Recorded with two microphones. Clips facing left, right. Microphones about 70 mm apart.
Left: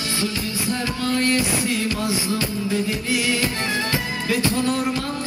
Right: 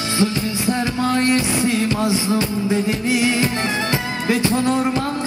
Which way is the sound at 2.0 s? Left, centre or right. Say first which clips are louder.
Right 4 dB; right.